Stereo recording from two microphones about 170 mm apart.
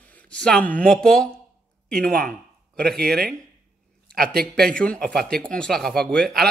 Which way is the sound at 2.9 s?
65° right (ahead or behind).